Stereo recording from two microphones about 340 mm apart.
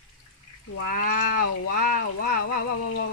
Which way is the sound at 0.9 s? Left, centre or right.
Left.